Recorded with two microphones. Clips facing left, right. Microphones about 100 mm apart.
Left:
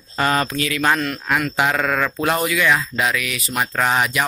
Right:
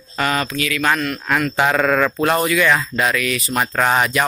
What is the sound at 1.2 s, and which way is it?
Speech, 10° left (ahead or behind).